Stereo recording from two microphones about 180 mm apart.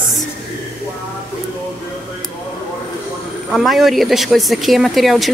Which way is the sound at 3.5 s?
Centre (ahead or behind).